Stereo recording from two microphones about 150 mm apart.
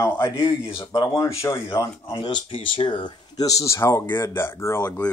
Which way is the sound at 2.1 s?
30° left (ahead or behind).